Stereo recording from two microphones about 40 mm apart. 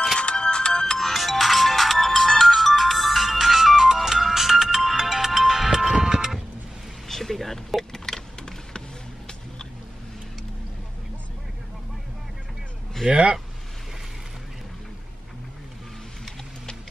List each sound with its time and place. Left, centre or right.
0.2 s ringtone: left
0.9 s ringtone: centre
5.9 s music: right
7.1 s a sound: centre
13.1 s speech: right